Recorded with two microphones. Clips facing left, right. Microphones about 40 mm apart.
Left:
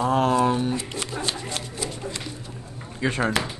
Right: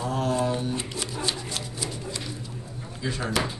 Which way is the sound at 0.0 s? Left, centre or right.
Left.